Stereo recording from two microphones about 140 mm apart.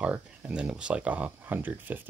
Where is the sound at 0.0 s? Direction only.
10° right (ahead or behind).